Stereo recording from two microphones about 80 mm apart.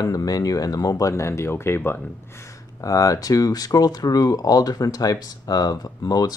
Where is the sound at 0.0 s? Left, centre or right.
Left.